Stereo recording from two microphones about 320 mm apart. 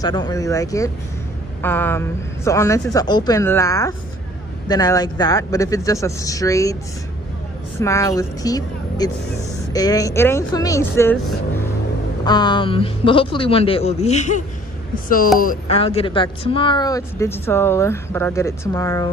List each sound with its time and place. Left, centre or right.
0.0 s speech: centre
7.8 s speech: centre
12.3 s speech: centre